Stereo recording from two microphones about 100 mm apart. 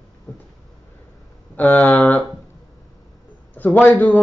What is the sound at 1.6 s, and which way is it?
Speech, 15° left (ahead or behind).